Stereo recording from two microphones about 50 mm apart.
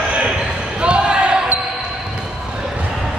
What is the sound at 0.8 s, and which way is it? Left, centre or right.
Basketball bounce, centre.